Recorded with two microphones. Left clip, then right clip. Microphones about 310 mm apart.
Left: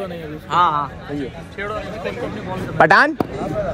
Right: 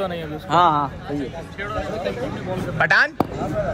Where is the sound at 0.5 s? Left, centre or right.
Right.